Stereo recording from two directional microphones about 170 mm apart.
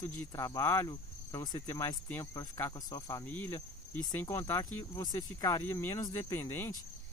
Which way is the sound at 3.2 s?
10° left (ahead or behind).